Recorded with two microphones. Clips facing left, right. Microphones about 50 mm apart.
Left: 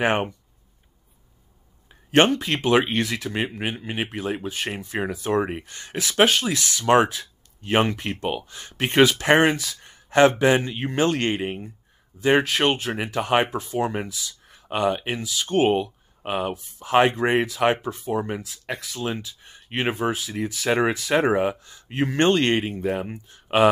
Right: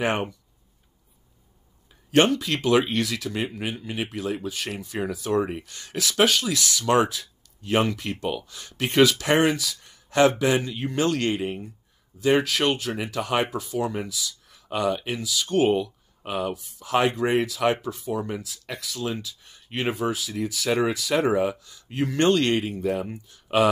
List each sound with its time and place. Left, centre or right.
0.0 s speech: left
1.9 s speech: left